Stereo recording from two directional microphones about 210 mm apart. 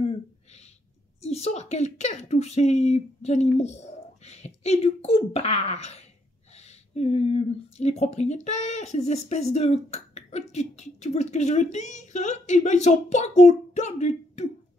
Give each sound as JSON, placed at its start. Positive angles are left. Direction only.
{"t": 1.2, "sound": "speech", "side_deg": 30}